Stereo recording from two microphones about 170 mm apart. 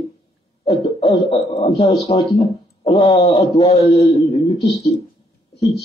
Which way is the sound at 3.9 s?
25° left (ahead or behind).